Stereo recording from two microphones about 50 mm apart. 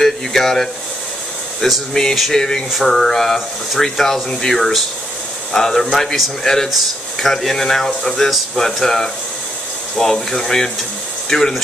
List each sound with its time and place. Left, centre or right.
0.0 s speech: centre